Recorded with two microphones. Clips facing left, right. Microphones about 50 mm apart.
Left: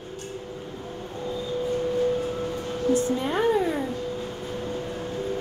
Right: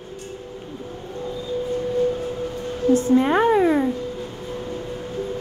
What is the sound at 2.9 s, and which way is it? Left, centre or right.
Speech, right.